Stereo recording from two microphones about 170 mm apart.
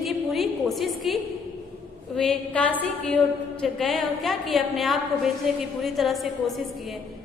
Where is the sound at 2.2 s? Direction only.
5° left (ahead or behind).